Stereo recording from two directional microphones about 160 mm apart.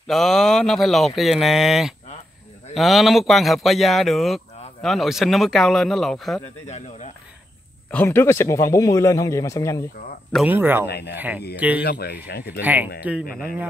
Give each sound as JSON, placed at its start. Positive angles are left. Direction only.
{"t": 0.0, "sound": "speech", "side_deg": 0}
{"t": 7.9, "sound": "a man's voice", "side_deg": 10}
{"t": 10.4, "sound": "speech", "side_deg": -10}
{"t": 10.9, "sound": "speech", "side_deg": 90}
{"t": 11.1, "sound": "speech", "side_deg": -10}
{"t": 11.8, "sound": "speech", "side_deg": 85}
{"t": 12.6, "sound": "speech", "side_deg": -10}